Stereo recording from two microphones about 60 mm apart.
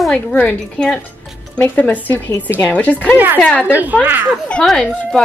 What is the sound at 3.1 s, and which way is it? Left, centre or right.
A woman's voice, right.